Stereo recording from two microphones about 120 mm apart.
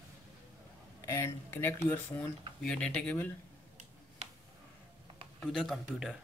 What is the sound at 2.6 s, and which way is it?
Speech, 5° left (ahead or behind).